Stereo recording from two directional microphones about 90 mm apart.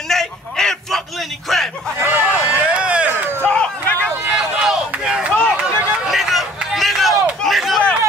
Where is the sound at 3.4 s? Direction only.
15° left (ahead or behind).